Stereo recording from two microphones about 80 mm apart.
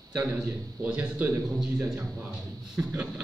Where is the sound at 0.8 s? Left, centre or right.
Right.